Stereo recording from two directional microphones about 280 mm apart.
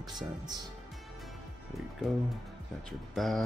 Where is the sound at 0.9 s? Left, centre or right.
Centre.